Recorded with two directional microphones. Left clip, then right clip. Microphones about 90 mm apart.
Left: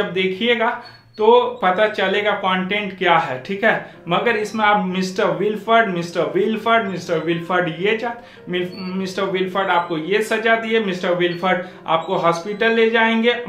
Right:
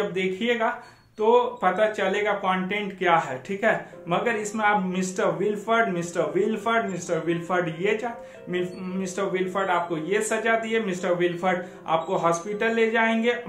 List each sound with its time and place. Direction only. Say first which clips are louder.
0.1 s speech: left 7 dB; 25° left (ahead or behind)